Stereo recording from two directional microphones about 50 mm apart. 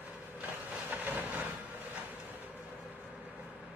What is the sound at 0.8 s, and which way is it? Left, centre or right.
Vehicle, right.